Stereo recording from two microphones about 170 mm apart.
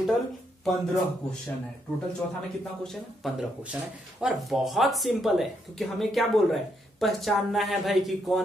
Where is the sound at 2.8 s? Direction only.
Centre (ahead or behind).